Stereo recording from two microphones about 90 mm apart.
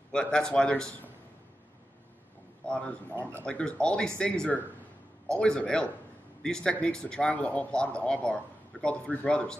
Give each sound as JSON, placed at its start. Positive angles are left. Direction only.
{"t": 0.1, "sound": "speech", "side_deg": 10}
{"t": 2.7, "sound": "speech", "side_deg": 15}